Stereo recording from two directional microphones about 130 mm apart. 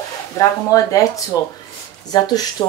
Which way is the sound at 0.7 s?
25° left (ahead or behind).